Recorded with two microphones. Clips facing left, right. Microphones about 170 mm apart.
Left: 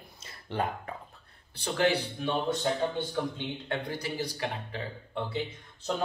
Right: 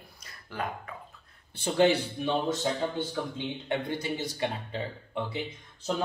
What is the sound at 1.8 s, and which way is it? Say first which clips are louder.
Speech: right 4 dB; 25° right (ahead or behind).